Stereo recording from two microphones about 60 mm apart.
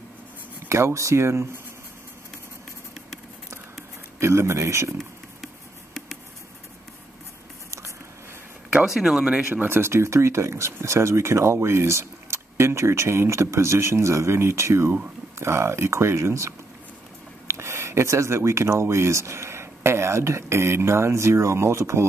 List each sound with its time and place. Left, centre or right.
0.7 s speech: right
4.2 s speech: right
8.8 s speech: centre
9.5 s speech: right